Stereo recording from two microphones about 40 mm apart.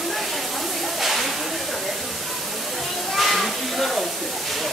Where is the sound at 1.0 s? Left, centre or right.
Centre.